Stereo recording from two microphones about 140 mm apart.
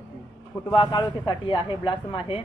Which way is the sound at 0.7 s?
35° left (ahead or behind).